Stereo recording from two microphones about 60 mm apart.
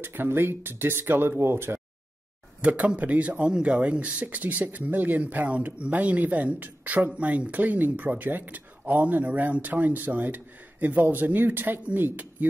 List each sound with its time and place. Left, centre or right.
0.0 s speech: right
2.6 s speech: right